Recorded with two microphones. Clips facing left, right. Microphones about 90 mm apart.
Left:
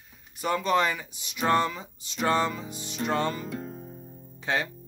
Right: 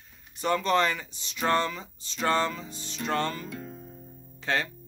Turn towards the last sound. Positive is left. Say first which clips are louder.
# even
turn(degrees=15)  # may be behind; listen again after turning